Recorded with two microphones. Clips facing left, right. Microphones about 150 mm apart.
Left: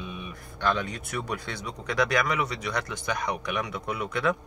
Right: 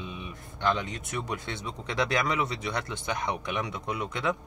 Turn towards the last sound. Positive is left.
turn(degrees=-20)  # may be behind; listen again after turning